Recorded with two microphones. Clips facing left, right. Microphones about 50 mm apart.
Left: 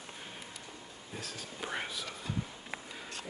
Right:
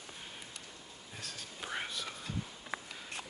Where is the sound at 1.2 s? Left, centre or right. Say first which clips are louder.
Left 3 dB; centre.